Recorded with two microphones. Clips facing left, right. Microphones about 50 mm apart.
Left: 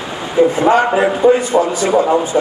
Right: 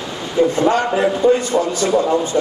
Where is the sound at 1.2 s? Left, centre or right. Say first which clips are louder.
Left 4 dB; centre.